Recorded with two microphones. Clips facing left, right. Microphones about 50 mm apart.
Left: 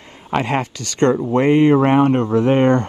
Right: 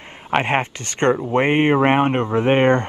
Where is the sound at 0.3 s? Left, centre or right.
Right.